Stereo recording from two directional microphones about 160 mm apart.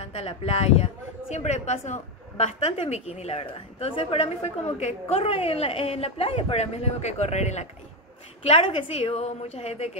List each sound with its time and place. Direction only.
0.0 s a woman's voice: 40° left (ahead or behind)
9.0 s a woman's voice: 40° left (ahead or behind)